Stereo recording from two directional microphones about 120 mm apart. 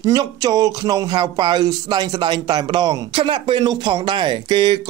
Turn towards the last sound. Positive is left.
turn(degrees=-40)  # may be behind; listen again after turning